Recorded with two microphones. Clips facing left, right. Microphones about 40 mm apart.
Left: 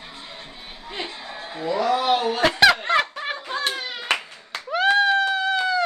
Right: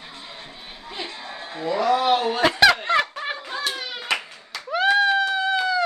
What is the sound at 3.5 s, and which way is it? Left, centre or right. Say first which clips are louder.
Hands: left 2 dB; left.